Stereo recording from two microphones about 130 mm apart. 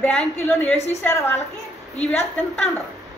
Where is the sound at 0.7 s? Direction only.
55° left (ahead or behind).